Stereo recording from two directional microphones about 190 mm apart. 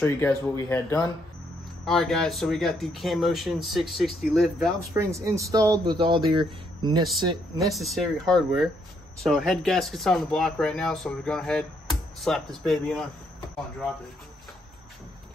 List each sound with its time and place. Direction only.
0.0 s speech: 15° left (ahead or behind)
1.9 s speech: centre (ahead or behind)
4.9 s speech: 15° right (ahead or behind)
7.5 s speech: centre (ahead or behind)